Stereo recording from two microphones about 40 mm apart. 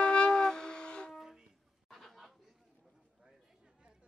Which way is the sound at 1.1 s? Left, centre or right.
Centre.